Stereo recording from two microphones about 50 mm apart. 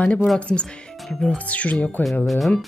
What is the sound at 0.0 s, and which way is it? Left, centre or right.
Speech, left.